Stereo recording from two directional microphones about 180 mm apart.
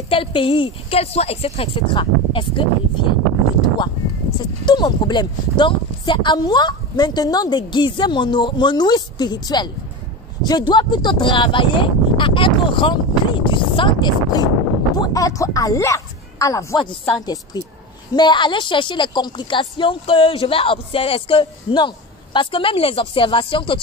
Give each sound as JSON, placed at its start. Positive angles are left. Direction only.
{"t": 0.1, "sound": "a woman's voice", "side_deg": 30}
{"t": 3.6, "sound": "a sound", "side_deg": 25}
{"t": 4.6, "sound": "a woman's voice", "side_deg": 25}
{"t": 10.7, "sound": "a woman's voice", "side_deg": 25}